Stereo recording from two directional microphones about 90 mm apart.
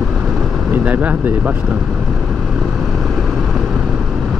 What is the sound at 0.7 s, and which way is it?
Speech, 15° right (ahead or behind).